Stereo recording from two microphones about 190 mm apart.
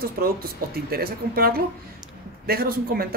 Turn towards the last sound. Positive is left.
turn(degrees=-50)  # may be behind; listen again after turning